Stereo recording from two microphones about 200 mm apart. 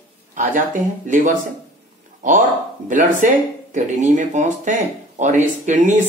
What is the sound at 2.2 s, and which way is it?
Speech, 40° right (ahead or behind).